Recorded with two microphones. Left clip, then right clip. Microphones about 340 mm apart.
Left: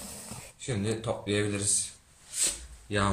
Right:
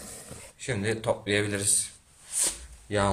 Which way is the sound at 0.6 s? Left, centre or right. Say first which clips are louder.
Right 3 dB; right.